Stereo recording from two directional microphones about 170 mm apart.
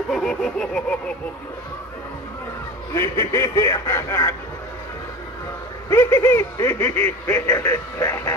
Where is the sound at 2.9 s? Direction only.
15° left (ahead or behind).